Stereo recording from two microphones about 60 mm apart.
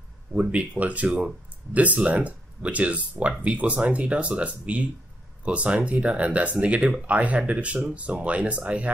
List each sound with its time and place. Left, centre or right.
0.3 s speech: centre